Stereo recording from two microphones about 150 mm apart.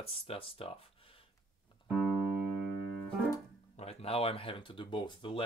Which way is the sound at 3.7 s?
40° left (ahead or behind).